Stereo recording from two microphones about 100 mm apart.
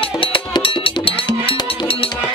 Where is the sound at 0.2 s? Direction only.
65° left (ahead or behind).